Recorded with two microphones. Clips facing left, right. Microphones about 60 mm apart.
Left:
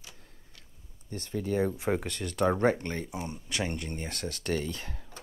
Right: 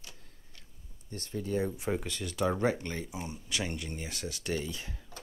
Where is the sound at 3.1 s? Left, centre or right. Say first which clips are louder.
Left 3 dB; centre.